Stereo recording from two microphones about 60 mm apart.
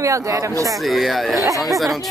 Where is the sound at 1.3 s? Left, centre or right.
Right.